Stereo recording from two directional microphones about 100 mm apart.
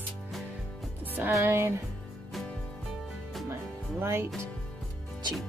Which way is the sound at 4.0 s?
25° right (ahead or behind).